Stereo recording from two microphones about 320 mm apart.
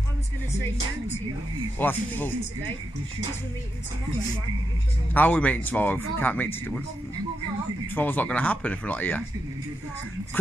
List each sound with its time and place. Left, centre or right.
1.8 s speech: centre
5.1 s speech: centre
7.9 s speech: centre
10.4 s speech: centre